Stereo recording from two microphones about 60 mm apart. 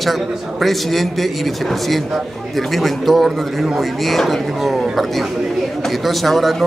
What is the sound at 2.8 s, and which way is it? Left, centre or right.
A man's voice, centre.